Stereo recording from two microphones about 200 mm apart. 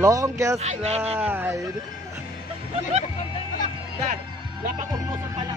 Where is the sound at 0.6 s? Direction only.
35° right (ahead or behind).